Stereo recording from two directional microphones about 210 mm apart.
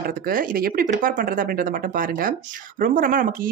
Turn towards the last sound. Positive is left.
turn(degrees=-40)  # may be behind; listen again after turning